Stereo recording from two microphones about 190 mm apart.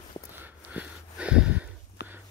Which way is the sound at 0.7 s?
5° right (ahead or behind).